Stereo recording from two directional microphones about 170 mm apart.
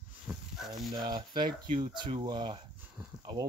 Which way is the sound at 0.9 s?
25° right (ahead or behind).